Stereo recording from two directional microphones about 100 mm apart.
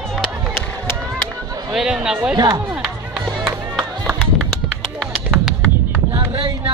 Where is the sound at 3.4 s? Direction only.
Centre (ahead or behind).